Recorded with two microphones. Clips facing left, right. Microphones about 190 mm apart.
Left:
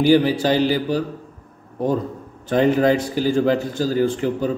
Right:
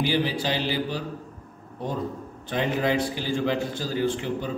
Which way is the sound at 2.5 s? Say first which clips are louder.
Left 8 dB; 45° left (ahead or behind).